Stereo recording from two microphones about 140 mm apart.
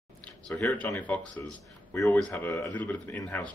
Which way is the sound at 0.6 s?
15° left (ahead or behind).